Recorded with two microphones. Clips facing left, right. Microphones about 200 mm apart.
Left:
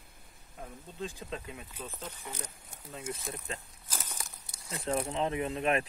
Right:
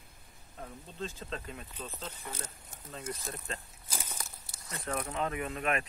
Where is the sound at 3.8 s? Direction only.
10° right (ahead or behind).